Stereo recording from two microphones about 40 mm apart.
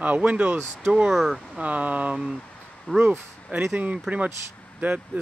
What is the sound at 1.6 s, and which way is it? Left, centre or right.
Speech, right.